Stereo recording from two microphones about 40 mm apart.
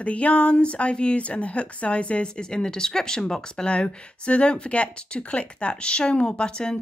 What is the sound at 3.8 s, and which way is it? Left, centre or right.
Speech, left.